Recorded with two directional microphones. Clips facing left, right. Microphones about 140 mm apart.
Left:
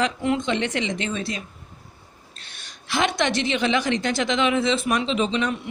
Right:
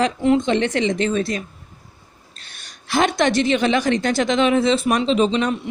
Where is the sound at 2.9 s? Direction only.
45° right (ahead or behind).